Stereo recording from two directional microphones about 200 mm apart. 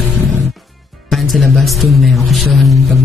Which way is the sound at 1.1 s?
Centre (ahead or behind).